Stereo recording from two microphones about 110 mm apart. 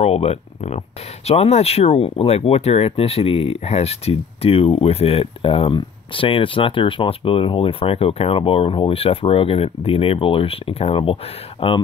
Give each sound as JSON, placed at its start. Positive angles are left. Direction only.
{"t": 0.0, "sound": "speech", "side_deg": 70}